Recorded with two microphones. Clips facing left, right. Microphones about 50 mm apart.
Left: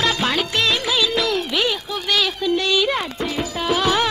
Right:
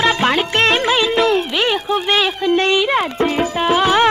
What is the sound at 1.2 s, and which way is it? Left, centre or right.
Music, right.